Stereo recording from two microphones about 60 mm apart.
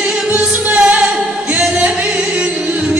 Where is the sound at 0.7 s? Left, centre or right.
Right.